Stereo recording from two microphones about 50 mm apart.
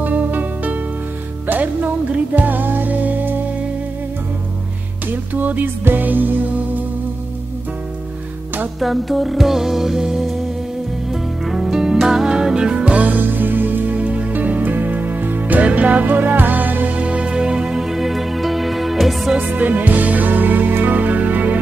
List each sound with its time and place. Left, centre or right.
0.0 s music: right
2.1 s music: right
5.1 s music: right
8.7 s music: centre
11.4 s music: centre
19.3 s music: right